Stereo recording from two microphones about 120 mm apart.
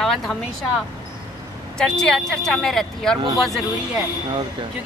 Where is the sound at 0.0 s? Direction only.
5° left (ahead or behind).